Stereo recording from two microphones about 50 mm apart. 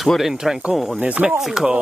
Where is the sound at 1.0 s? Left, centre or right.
Right.